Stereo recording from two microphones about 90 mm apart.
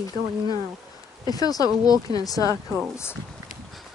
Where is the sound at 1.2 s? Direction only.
45° left (ahead or behind).